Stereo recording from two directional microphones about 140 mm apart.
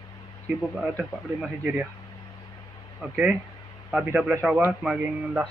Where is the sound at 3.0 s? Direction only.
10° right (ahead or behind).